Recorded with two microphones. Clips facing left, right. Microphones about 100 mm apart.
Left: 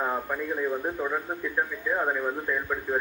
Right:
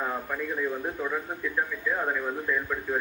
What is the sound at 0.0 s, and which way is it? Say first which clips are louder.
A man's voice: left 2 dB; 20° left (ahead or behind).